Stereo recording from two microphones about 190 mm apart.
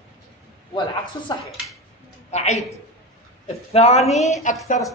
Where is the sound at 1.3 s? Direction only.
25° left (ahead or behind).